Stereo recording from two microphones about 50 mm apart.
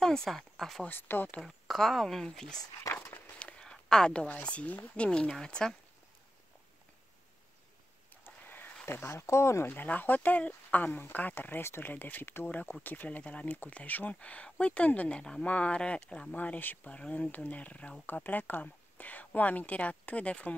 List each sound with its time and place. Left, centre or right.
0.0 s speech: centre
0.8 s speech: left
1.4 s speech: centre
2.9 s walk: left
3.3 s a sound: left
3.7 s a woman's voice: centre
8.5 s a sound: left
8.9 s speech: left
9.7 s speech: left
16.3 s speech: left
16.8 s speech: left